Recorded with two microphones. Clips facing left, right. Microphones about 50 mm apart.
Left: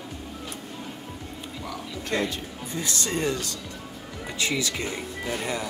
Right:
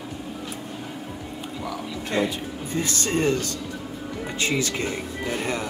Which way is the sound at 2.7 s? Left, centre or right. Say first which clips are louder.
Right 4 dB; right.